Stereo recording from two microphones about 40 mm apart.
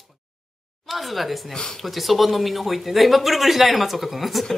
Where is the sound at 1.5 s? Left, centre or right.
Centre.